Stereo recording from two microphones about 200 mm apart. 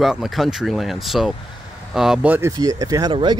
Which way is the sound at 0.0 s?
Centre (ahead or behind).